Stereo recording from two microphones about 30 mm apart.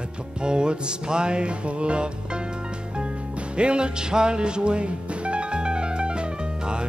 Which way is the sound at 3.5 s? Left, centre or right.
Right.